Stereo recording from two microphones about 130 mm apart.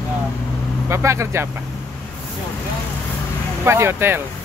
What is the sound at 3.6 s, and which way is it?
Speech, 20° right (ahead or behind).